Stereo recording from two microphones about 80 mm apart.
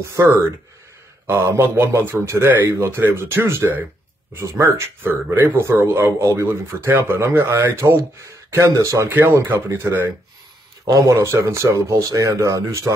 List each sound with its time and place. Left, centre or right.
0.1 s speech: right
1.2 s speech: right
9.5 s speech: right
10.9 s speech: right